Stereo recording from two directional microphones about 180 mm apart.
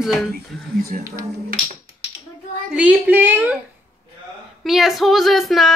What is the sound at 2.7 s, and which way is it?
Speech, 10° right (ahead or behind).